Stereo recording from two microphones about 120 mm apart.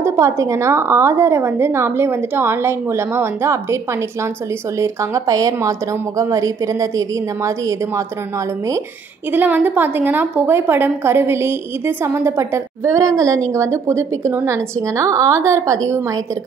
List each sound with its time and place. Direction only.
0.0 s a woman's voice: 25° right (ahead or behind)
4.7 s a woman's voice: 25° right (ahead or behind)
9.3 s a woman's voice: 15° right (ahead or behind)